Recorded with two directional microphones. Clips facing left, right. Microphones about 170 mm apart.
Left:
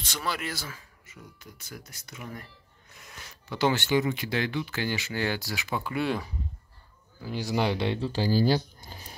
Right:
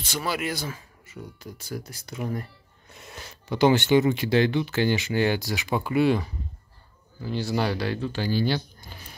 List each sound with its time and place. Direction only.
0.0 s speech: 5° right (ahead or behind); by 2.4 s 35° right (ahead or behind)
2.9 s a sound: 30° right (ahead or behind)
3.5 s speech: 20° right (ahead or behind)
5.9 s speech: centre (ahead or behind)
7.2 s speech: 10° left (ahead or behind); by 9.1 s 35° left (ahead or behind)